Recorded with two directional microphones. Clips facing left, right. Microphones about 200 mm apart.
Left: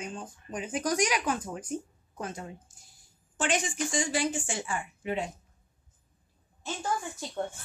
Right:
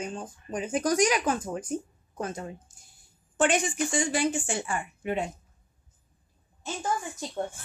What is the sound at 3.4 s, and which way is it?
A woman's voice, 60° right (ahead or behind).